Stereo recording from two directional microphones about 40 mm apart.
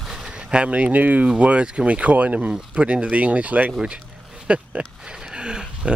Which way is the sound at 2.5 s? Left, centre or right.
Right.